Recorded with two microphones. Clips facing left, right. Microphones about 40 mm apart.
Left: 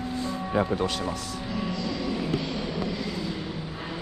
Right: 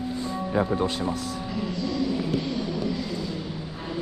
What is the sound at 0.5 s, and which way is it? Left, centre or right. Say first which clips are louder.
Speech: right 1 dB; left.